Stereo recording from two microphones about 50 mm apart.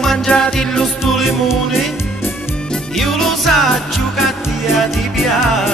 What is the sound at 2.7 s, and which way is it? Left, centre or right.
Music, centre.